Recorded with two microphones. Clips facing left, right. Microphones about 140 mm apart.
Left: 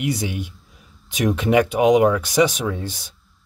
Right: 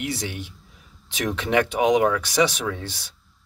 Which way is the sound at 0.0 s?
10° left (ahead or behind).